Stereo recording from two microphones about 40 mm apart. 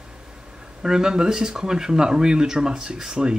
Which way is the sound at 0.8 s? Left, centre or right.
Centre.